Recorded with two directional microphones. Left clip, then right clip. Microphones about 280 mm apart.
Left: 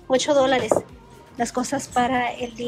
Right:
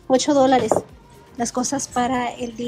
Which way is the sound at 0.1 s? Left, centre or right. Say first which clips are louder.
Right 2 dB; centre.